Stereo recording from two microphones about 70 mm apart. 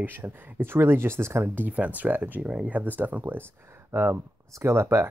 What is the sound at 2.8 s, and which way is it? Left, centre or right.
Speech, right.